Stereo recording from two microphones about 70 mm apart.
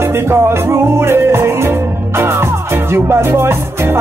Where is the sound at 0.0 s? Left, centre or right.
Right.